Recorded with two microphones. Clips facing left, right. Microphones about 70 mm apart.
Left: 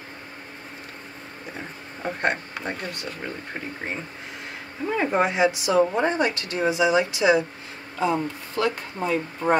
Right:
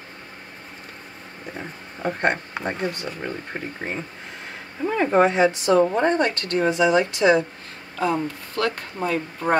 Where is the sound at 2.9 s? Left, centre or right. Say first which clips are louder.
Right 3 dB; centre.